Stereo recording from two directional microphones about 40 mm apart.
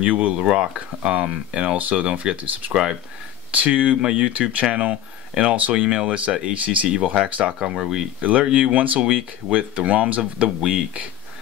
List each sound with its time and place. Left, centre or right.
0.0 s speech: right
0.4 s speech: right
1.8 s speech: right
2.0 s speech: right
2.7 s speech: centre
3.5 s speech: right
7.6 s speech: centre
8.2 s speech: right
10.6 s speech: right